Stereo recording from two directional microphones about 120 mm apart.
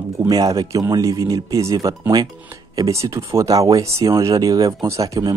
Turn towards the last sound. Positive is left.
turn(degrees=-30)  # may be behind; listen again after turning